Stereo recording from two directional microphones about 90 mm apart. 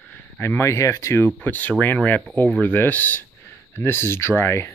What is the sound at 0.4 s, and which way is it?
Speech, 30° left (ahead or behind).